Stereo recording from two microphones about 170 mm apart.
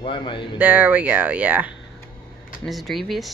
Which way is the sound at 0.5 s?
10° right (ahead or behind).